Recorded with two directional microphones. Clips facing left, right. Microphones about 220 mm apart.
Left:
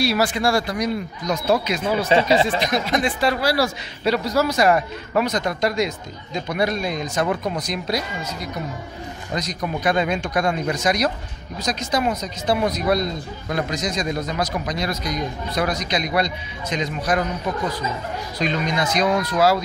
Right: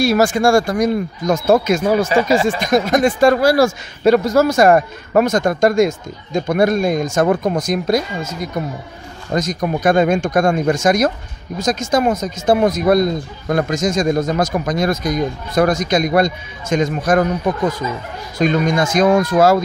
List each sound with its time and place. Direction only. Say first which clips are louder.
0.0 s speech: right 6 dB; 45° right (ahead or behind)
2.0 s speech: right 2 dB; 25° left (ahead or behind)
2.6 s speech: right 7 dB; 45° right (ahead or behind)